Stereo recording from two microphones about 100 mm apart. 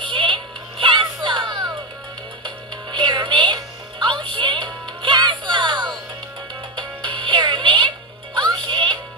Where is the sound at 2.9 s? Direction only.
50° right (ahead or behind).